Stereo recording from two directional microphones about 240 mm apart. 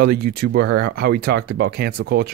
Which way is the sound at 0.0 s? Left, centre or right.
Right.